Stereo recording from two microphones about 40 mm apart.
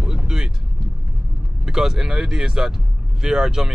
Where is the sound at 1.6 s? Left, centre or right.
Centre.